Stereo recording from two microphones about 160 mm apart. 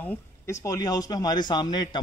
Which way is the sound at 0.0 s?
15° left (ahead or behind).